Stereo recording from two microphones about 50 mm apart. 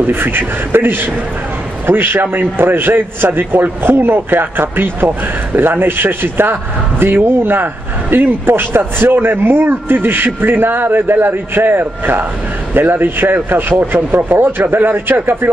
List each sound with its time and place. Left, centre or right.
0.0 s a man's voice: right